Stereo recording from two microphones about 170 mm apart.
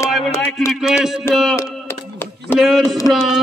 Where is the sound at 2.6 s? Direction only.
Centre (ahead or behind).